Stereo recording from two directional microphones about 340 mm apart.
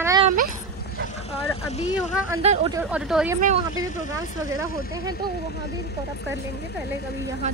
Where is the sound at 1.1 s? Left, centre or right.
Centre.